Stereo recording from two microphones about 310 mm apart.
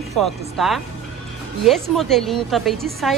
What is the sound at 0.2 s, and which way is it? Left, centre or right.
A woman's voice, centre.